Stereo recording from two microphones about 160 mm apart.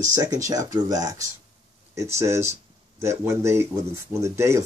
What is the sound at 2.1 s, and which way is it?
Speech, 15° right (ahead or behind).